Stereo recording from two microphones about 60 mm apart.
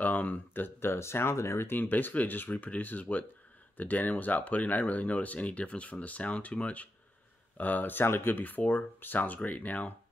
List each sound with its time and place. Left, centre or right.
0.0 s speech: left
1.7 s speech: left